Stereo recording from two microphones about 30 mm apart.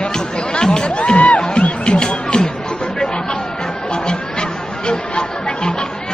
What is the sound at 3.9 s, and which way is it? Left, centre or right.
Chatter, left.